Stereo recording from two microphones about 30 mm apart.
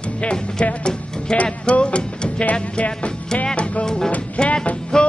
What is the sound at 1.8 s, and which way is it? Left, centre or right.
Music, left.